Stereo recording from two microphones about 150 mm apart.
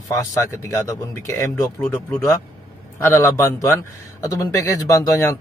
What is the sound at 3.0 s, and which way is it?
Speech, 15° left (ahead or behind).